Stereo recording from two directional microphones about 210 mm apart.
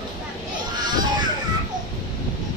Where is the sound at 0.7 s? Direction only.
20° right (ahead or behind).